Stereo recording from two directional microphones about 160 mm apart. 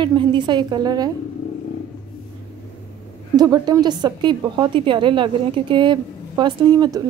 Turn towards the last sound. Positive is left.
turn(degrees=-25)  # may be behind; listen again after turning